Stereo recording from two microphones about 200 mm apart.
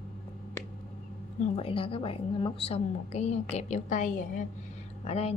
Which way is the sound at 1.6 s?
25° left (ahead or behind).